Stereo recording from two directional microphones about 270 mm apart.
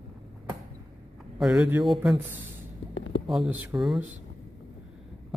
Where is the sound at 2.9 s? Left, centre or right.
Left.